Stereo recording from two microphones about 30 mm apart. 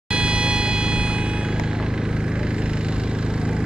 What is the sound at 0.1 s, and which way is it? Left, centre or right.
Music, right.